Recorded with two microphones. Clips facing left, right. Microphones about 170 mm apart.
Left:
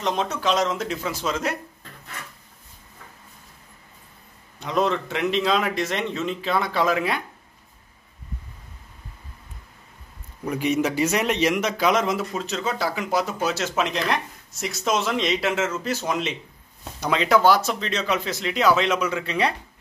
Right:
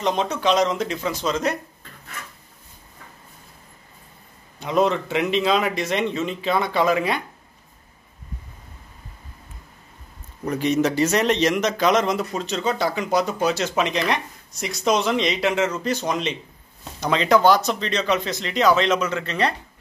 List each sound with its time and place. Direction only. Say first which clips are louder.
0.0 s a man's voice: right 3 dB; centre (ahead or behind)
4.6 s a man's voice: right 3 dB; centre (ahead or behind)
10.4 s a man's voice: right 2 dB; 10° left (ahead or behind)